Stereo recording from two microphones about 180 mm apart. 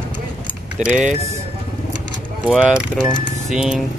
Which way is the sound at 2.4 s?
5° right (ahead or behind).